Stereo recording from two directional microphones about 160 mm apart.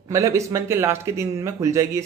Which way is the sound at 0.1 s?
20° right (ahead or behind).